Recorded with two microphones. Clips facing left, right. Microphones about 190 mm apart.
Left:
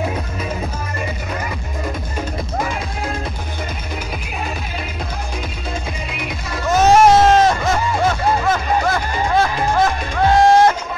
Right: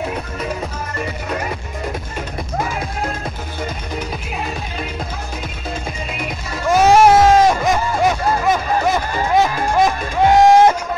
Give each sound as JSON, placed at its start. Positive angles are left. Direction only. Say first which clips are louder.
{"t": 6.7, "sound": "music", "louder": "right 1 dB", "side_deg": -10}